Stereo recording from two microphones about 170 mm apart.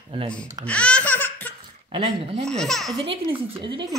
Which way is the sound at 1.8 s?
35° right (ahead or behind).